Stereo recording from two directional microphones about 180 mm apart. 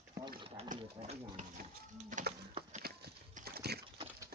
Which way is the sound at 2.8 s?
60° right (ahead or behind).